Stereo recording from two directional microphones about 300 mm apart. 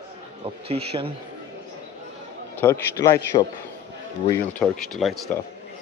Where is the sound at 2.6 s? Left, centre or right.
Centre.